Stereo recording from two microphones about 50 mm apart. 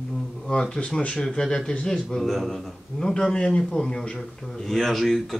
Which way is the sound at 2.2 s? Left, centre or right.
Centre.